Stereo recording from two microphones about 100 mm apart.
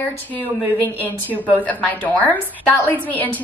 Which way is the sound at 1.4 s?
15° left (ahead or behind).